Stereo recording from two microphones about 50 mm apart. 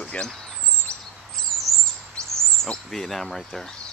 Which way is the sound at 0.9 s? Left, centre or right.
Left.